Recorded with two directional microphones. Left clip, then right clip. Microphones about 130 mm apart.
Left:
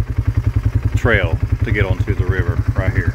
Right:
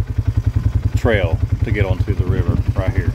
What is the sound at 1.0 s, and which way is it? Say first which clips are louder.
Speech: left 1 dB; 10° right (ahead or behind).